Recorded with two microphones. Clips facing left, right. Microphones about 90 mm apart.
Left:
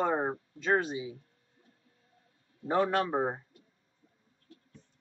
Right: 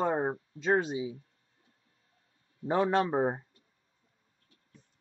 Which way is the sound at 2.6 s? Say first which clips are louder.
Right 1 dB; 25° right (ahead or behind).